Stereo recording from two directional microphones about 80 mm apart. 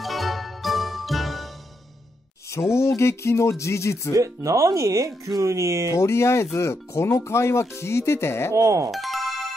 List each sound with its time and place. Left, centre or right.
0.0 s music: centre
2.5 s speech: left
4.1 s speech: right
5.9 s speech: left
8.5 s speech: right
8.9 s music: centre